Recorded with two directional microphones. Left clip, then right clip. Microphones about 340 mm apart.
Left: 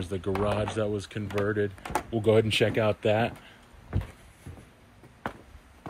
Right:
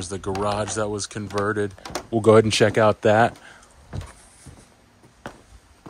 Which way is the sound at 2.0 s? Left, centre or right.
Right.